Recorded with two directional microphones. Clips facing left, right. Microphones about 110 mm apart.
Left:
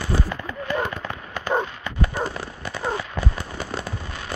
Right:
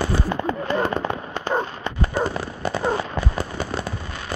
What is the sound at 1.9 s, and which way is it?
Horse, 30° right (ahead or behind).